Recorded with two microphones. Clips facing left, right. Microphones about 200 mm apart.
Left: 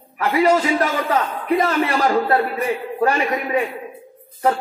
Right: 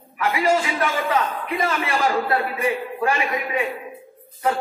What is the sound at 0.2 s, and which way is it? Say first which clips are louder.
A man's voice: left 4 dB; 45° left (ahead or behind).